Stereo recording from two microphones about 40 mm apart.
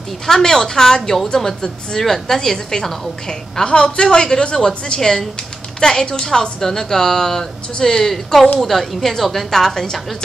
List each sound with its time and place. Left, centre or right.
0.3 s a woman's voice: centre
3.6 s a woman's voice: left; by 10.0 s centre